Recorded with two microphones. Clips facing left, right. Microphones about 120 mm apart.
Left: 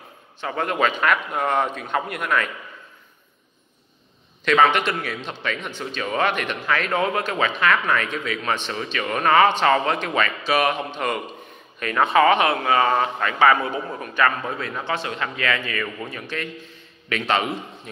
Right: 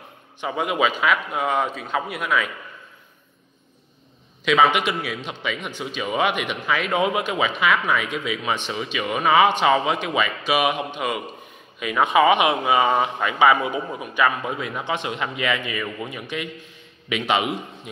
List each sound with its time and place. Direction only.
0.4 s a man's voice: 10° right (ahead or behind)
4.5 s a man's voice: 5° right (ahead or behind)